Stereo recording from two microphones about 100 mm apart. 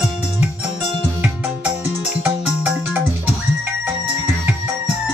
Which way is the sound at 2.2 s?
15° right (ahead or behind).